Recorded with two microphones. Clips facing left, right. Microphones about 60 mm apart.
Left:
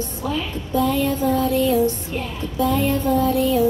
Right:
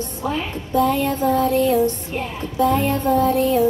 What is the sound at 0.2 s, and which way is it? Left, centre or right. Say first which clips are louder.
Music: right 2 dB; right.